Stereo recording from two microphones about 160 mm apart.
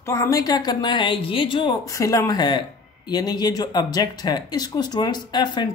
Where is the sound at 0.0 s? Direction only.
20° left (ahead or behind).